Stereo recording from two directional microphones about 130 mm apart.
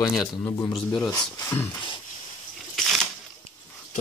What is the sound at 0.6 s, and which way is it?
Speech, 30° left (ahead or behind).